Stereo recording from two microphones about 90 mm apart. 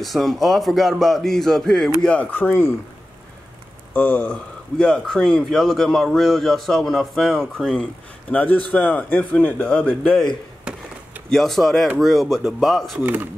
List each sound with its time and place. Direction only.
0.0 s speech: centre (ahead or behind)
2.0 s speech: 15° left (ahead or behind)
3.9 s speech: 20° left (ahead or behind)
8.3 s speech: 15° left (ahead or behind)
11.2 s speech: 5° left (ahead or behind)
13.0 s speech: 20° right (ahead or behind)